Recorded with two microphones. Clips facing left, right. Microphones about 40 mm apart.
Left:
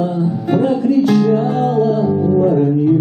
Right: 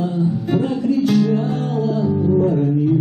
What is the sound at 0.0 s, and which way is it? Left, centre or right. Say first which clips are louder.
Music: left 3 dB; centre.